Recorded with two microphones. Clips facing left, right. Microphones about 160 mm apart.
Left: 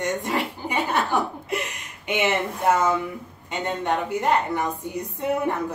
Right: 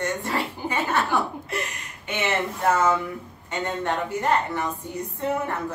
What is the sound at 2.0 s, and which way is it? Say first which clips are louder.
Speech: left 3 dB; 15° left (ahead or behind).